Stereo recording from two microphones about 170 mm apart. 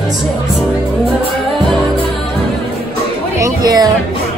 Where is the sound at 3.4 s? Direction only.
25° right (ahead or behind).